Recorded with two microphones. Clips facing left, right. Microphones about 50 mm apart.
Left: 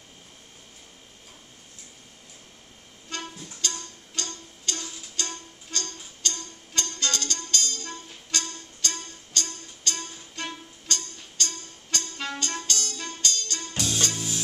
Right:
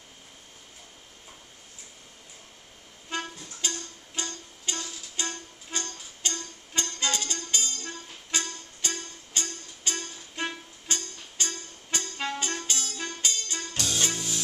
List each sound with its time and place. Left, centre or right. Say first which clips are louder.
3.1 s music: right 2 dB; centre